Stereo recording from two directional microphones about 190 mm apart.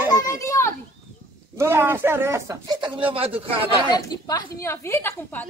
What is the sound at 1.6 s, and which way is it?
A man's voice, 15° right (ahead or behind).